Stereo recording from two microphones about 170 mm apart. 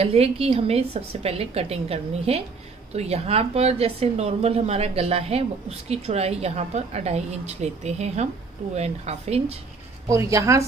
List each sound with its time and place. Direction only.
0.0 s speech: 35° right (ahead or behind)
10.0 s a woman's voice: 20° right (ahead or behind)